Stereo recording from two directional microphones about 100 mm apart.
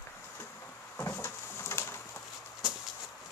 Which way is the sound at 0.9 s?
25° left (ahead or behind).